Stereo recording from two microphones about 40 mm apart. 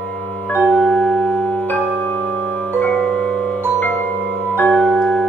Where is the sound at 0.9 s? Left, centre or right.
Left.